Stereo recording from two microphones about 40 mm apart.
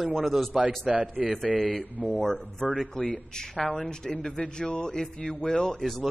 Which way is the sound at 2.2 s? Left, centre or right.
Centre.